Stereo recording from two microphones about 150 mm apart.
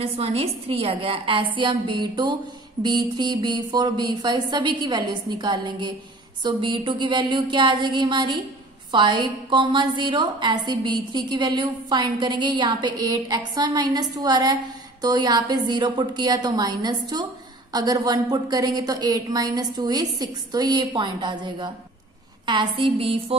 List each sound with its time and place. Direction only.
0.0 s a woman's voice: 40° right (ahead or behind)